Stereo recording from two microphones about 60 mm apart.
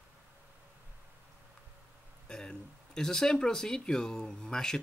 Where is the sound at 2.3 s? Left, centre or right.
Centre.